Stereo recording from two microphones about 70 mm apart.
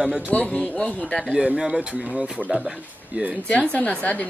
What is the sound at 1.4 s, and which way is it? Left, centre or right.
Speech, centre.